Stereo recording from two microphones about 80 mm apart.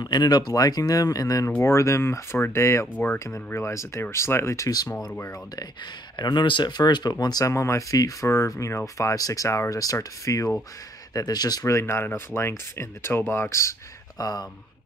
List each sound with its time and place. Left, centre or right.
0.0 s speech: left
1.6 s speech: left
2.9 s speech: left
3.4 s speech: left
6.1 s speech: left
7.4 s speech: left
11.1 s speech: left
11.6 s speech: left